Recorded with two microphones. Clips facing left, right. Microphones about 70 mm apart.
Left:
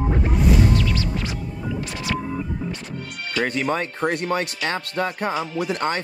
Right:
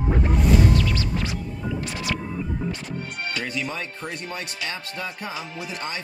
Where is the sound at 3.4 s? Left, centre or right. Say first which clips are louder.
Left 7 dB; left.